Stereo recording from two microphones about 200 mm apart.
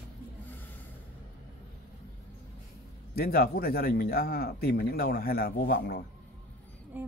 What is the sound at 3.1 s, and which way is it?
Speech, 50° left (ahead or behind).